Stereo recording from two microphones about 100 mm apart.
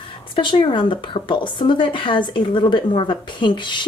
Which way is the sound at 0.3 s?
55° left (ahead or behind).